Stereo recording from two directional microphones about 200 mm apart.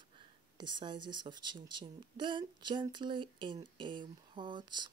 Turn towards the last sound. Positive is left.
turn(degrees=-25)  # may be behind; listen again after turning